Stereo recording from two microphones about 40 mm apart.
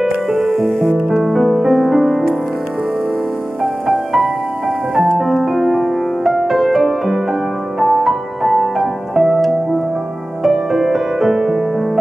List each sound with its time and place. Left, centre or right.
0.0 s music: centre
3.6 s music: centre
10.4 s music: centre